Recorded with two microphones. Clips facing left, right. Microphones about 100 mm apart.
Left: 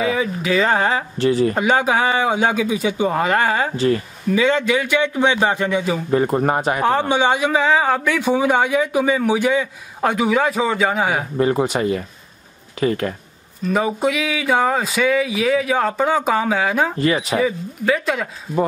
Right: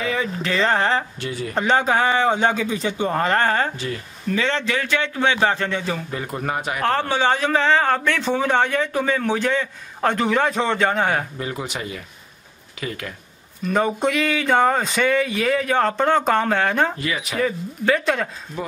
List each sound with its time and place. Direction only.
0.0 s a man's voice: 10° left (ahead or behind)
3.7 s speech: 40° left (ahead or behind)
4.3 s a man's voice: 10° left (ahead or behind)
6.1 s speech: 40° left (ahead or behind)
6.8 s a man's voice: 15° left (ahead or behind)
11.3 s speech: 40° left (ahead or behind)
13.7 s speech: 5° left (ahead or behind)
17.0 s speech: 35° left (ahead or behind)
17.4 s speech: 5° left (ahead or behind)